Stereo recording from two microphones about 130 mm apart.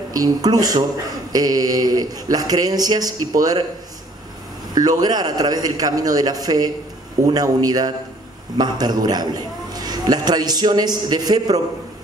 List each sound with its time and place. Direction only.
0.1 s speech: 30° right (ahead or behind)
4.7 s a man's voice: 30° right (ahead or behind)